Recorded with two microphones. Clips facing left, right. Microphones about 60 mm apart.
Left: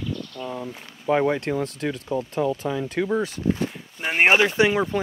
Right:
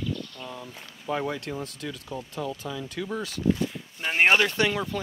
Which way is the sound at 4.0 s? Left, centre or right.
Centre.